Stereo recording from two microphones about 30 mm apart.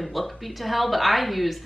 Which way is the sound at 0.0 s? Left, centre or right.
Centre.